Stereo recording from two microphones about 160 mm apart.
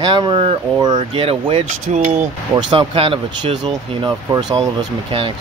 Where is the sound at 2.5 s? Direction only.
30° right (ahead or behind).